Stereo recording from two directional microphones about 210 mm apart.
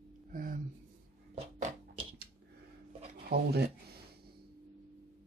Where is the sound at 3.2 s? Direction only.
50° right (ahead or behind).